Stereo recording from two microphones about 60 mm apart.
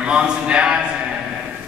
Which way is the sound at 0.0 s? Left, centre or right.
Centre.